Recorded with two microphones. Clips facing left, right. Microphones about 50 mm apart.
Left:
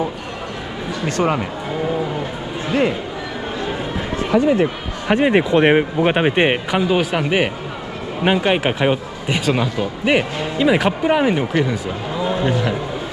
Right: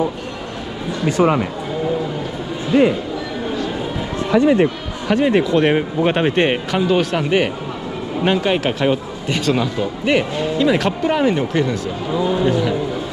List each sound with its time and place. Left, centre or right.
1.0 s speech: centre
4.3 s speech: right
5.0 s speech: left